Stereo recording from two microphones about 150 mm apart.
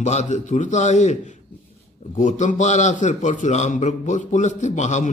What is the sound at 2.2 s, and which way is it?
A man's voice, 55° left (ahead or behind).